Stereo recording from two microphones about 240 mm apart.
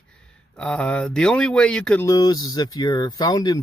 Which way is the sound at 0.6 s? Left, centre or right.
Centre.